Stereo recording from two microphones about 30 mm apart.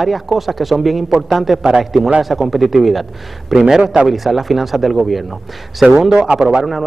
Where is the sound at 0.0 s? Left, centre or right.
Centre.